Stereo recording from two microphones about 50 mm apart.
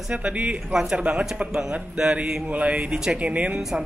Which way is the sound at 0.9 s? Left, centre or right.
Right.